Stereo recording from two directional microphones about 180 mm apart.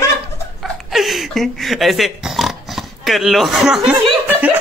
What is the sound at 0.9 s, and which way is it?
Pig, centre (ahead or behind).